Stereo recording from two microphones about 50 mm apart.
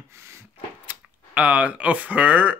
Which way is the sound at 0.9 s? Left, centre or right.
Right.